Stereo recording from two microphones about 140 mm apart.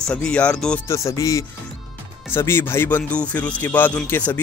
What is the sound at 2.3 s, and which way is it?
Speech, 15° left (ahead or behind).